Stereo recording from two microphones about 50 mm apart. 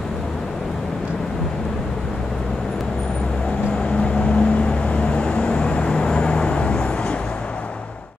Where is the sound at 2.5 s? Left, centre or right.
Centre.